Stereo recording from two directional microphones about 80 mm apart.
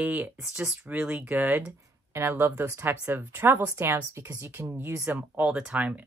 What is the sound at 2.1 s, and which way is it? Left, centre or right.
Speech, right.